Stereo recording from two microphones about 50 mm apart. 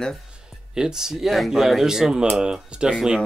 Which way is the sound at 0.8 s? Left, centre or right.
Centre.